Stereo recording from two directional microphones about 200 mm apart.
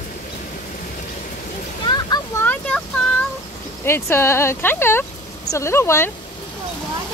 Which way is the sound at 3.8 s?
10° left (ahead or behind).